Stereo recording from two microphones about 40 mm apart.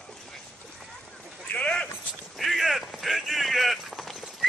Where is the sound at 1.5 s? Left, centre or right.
Left.